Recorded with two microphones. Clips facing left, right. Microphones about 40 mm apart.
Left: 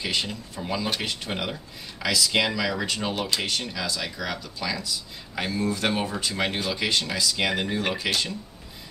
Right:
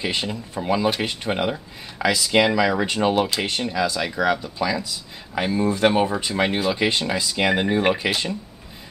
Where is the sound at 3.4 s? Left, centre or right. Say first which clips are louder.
Right 6 dB; right.